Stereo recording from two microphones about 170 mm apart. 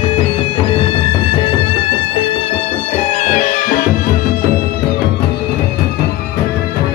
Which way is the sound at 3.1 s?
45° left (ahead or behind).